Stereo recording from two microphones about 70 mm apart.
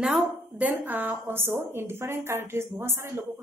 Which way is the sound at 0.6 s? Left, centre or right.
Right.